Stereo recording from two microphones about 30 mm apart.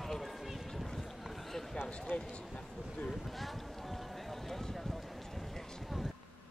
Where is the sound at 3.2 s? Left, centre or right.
Centre.